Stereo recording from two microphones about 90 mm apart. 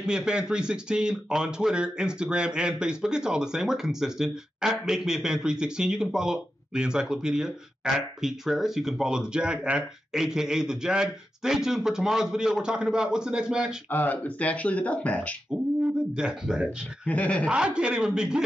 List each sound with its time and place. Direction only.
0.0 s speech: 10° right (ahead or behind)
13.8 s speech: 20° left (ahead or behind)
15.5 s speech: 10° right (ahead or behind)
17.0 s speech: 15° left (ahead or behind)
17.5 s speech: 10° right (ahead or behind)